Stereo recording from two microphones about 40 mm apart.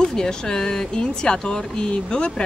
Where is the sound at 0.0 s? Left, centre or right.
Centre.